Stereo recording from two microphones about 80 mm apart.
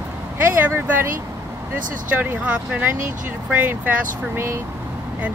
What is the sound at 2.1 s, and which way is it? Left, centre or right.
Speech, right.